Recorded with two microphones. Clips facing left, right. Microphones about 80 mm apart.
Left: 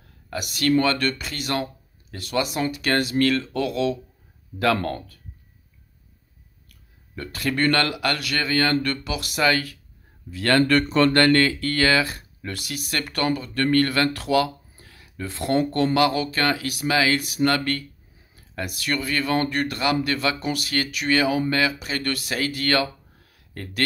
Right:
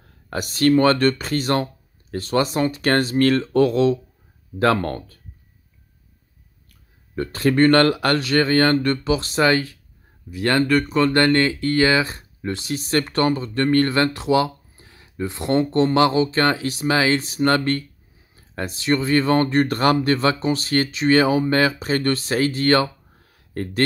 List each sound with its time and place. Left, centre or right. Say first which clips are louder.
0.3 s speech: right 4 dB; right
6.7 s speech: right 5 dB; right
10.7 s speech: even; centre
11.1 s speech: right 1 dB; right
23.3 s a sound: right 9 dB; right